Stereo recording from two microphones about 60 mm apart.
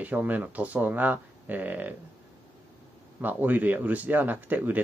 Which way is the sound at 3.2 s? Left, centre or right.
Right.